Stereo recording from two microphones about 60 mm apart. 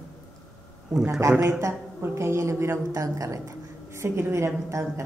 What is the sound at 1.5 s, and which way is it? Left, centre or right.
A woman's voice, right.